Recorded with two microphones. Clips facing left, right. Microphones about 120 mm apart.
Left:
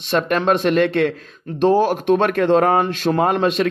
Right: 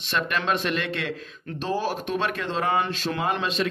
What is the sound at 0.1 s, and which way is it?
Speech, 45° left (ahead or behind).